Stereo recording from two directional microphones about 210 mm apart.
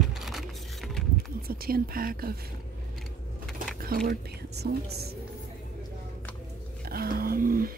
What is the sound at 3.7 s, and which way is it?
Speech, 45° right (ahead or behind).